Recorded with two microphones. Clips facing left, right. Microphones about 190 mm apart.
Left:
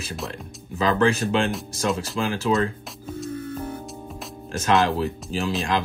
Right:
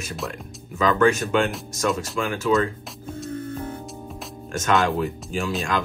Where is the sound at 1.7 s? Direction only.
30° left (ahead or behind).